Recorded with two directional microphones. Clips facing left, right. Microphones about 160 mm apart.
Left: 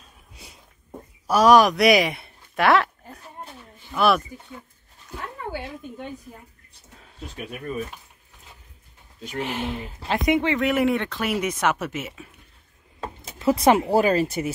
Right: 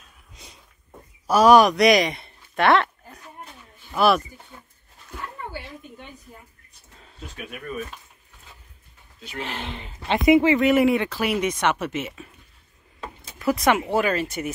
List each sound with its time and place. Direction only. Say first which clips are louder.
0.4 s a sound: left 1 dB; 10° left (ahead or behind)
1.2 s speech: right 1 dB; centre (ahead or behind)
3.9 s speech: right 1 dB; centre (ahead or behind)
7.3 s speech: left 2 dB; 30° left (ahead or behind)
9.4 s speech: left 4 dB; 10° left (ahead or behind)
13.0 s speech: left 2 dB; 30° left (ahead or behind)